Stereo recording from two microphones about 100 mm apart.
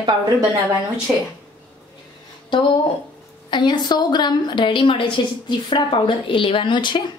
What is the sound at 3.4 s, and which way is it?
A woman's voice, 50° left (ahead or behind).